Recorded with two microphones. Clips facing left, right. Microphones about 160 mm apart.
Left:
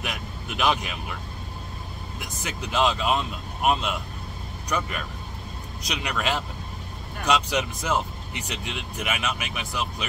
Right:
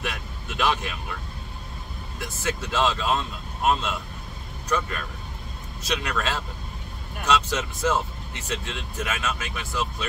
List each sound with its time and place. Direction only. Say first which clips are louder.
0.0 s vehicle: even; 15° left (ahead or behind)
2.1 s speech: right 6 dB; 15° left (ahead or behind)
4.6 s speech: right 2 dB; 15° left (ahead or behind)